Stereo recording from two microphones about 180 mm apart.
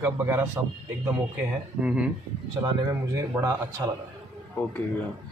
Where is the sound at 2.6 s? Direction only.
20° right (ahead or behind).